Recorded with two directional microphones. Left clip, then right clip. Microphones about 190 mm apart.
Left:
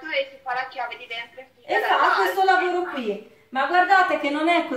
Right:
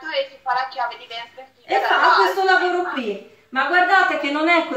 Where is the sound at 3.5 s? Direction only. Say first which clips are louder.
Right 2 dB; centre (ahead or behind).